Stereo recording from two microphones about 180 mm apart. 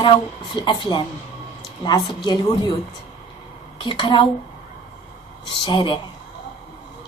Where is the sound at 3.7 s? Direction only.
25° left (ahead or behind).